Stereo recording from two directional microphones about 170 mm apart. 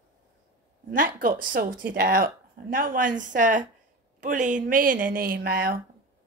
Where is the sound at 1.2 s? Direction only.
55° right (ahead or behind).